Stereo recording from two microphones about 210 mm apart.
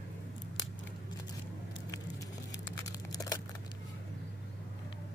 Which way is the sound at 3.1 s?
15° left (ahead or behind).